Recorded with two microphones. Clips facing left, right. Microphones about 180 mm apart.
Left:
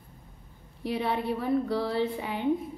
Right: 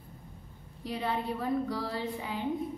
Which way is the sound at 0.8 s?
65° left (ahead or behind).